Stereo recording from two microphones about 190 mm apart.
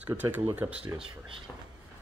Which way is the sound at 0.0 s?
10° right (ahead or behind).